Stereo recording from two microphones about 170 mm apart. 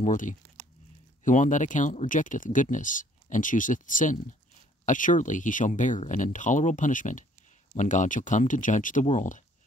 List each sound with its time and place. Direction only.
0.0 s speech: 50° left (ahead or behind)